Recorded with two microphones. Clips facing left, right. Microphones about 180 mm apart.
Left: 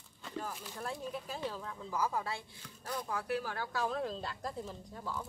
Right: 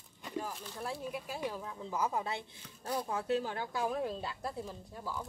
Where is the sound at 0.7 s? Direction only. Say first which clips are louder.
Right 1 dB; 5° right (ahead or behind).